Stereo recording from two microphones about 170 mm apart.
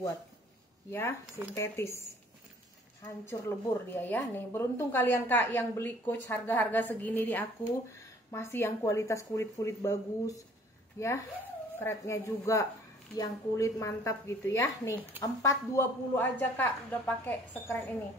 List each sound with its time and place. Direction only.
0.8 s a woman's voice: 15° left (ahead or behind)
3.3 s a woman's voice: 15° left (ahead or behind)